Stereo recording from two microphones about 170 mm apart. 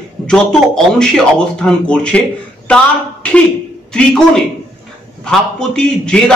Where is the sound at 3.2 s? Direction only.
5° left (ahead or behind).